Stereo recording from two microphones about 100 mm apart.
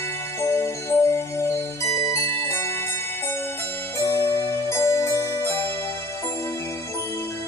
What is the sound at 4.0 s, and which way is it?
Music, 25° left (ahead or behind).